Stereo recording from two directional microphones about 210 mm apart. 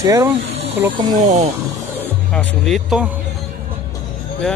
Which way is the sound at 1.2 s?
35° right (ahead or behind).